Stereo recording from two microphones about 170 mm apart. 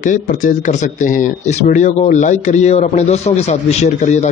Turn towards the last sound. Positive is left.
turn(degrees=40)  # may be behind; listen again after turning